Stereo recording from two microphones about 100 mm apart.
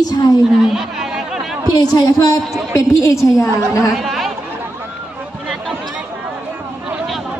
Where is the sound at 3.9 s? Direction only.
Centre (ahead or behind).